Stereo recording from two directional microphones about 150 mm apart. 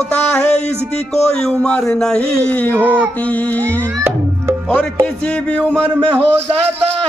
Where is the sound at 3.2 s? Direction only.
10° left (ahead or behind).